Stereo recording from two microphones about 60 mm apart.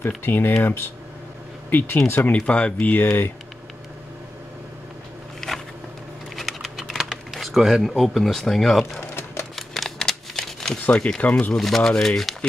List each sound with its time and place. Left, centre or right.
0.2 s speech: left
1.7 s speech: left
2.3 s speech: centre
5.4 s a sound: centre
6.3 s typing: centre
7.3 s speech: centre
9.1 s a sound: left
9.6 s a sound: centre
10.9 s speech: centre
11.5 s speech: centre